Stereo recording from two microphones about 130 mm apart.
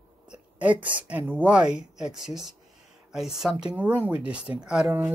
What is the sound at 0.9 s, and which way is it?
Speech, 10° right (ahead or behind).